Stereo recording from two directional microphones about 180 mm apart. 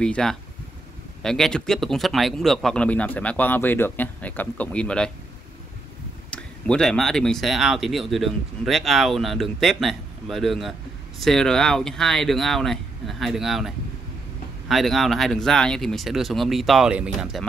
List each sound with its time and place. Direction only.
0.0 s speech: 5° left (ahead or behind)
6.3 s speech: 5° left (ahead or behind)